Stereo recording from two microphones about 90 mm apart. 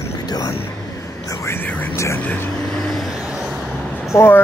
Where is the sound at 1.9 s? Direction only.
35° left (ahead or behind).